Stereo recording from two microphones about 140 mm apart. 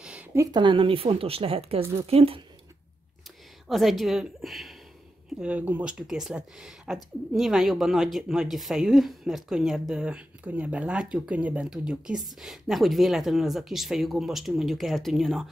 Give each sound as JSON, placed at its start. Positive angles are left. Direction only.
{"t": 0.0, "sound": "a sound", "side_deg": -10}
{"t": 0.3, "sound": "speech", "side_deg": -20}
{"t": 0.6, "sound": "speech", "side_deg": -35}
{"t": 3.6, "sound": "speech", "side_deg": 0}